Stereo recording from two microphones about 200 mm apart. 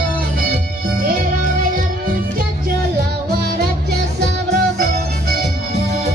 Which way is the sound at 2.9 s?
50° right (ahead or behind).